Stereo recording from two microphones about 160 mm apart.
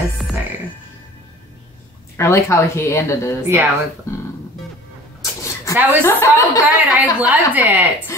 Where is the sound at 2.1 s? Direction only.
15° left (ahead or behind).